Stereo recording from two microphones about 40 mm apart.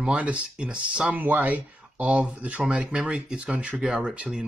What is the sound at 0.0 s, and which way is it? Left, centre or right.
Speech, right.